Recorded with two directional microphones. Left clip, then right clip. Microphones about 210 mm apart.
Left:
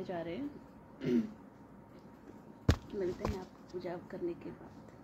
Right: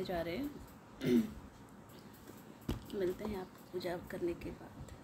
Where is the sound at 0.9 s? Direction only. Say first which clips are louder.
Right 1 dB; 15° right (ahead or behind).